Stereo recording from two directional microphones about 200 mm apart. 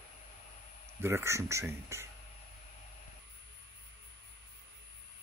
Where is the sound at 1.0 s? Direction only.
15° right (ahead or behind).